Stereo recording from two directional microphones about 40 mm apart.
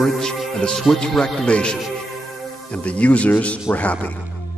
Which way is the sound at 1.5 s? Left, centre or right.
Left.